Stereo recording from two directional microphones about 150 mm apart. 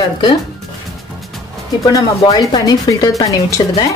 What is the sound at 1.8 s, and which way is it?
Speech, 25° left (ahead or behind).